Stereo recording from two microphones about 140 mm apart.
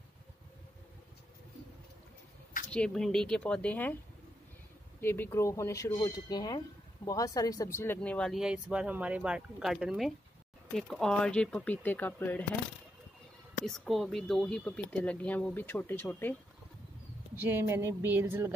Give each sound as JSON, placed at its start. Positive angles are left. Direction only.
{"t": 2.7, "sound": "speech", "side_deg": 5}
{"t": 5.0, "sound": "speech", "side_deg": 15}
{"t": 8.3, "sound": "speech", "side_deg": -5}
{"t": 13.7, "sound": "speech", "side_deg": 0}
{"t": 17.4, "sound": "speech", "side_deg": -15}